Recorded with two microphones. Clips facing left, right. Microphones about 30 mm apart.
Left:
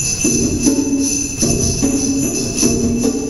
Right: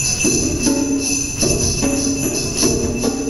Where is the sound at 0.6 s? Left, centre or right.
Right.